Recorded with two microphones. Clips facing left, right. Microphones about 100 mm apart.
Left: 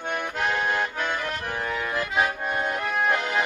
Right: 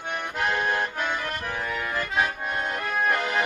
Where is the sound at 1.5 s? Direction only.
5° left (ahead or behind).